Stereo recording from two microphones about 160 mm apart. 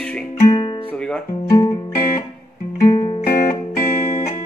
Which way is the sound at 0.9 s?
5° left (ahead or behind).